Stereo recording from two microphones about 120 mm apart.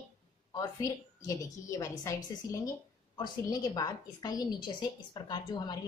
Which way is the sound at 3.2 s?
30° left (ahead or behind).